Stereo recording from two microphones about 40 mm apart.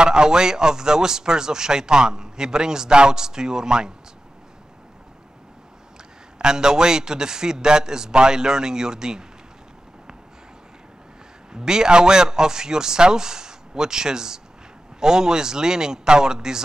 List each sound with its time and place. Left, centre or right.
0.0 s speech: centre
6.3 s speech: centre
11.5 s speech: centre